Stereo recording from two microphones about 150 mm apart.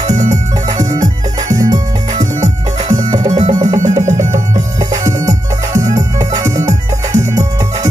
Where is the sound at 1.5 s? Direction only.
25° right (ahead or behind).